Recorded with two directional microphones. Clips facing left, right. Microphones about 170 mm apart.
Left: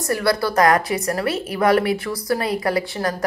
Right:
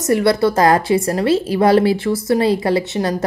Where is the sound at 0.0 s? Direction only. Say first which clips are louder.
Right 6 dB; 25° right (ahead or behind).